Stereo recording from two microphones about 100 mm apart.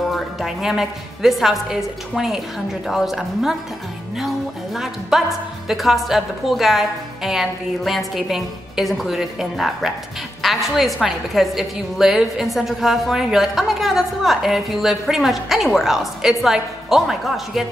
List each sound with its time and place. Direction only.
0.1 s a woman's voice: centre (ahead or behind)
4.7 s a woman's voice: centre (ahead or behind)